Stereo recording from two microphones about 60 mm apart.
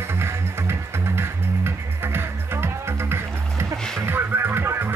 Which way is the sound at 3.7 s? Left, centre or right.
Centre.